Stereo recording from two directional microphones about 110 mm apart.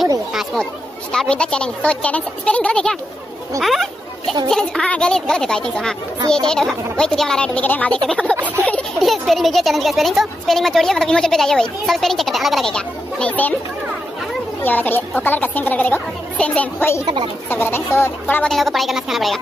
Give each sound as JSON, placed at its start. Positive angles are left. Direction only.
{"t": 0.3, "sound": "speech", "side_deg": -5}
{"t": 1.1, "sound": "speech", "side_deg": 5}
{"t": 14.6, "sound": "speech", "side_deg": 15}
{"t": 17.0, "sound": "speech", "side_deg": -45}
{"t": 17.5, "sound": "speech", "side_deg": 20}
{"t": 18.5, "sound": "speech", "side_deg": 0}